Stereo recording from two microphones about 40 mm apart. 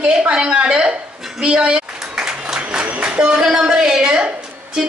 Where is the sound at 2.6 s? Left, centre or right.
Right.